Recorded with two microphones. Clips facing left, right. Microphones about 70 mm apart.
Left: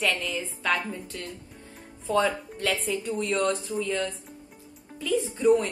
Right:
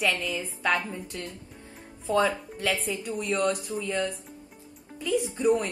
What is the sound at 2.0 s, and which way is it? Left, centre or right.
A woman's voice, centre.